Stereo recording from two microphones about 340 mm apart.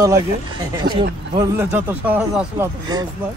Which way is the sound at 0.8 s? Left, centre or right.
Centre.